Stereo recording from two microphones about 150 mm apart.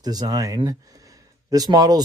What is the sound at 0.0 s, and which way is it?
Speech, 25° right (ahead or behind).